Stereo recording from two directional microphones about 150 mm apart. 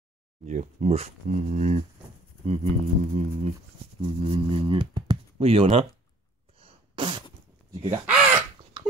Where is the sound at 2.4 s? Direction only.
40° right (ahead or behind).